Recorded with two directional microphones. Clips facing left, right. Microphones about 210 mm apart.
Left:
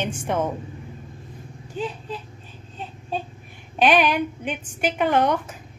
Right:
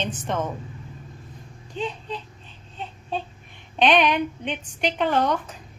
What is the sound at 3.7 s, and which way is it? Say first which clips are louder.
Speech: left 1 dB; 5° left (ahead or behind).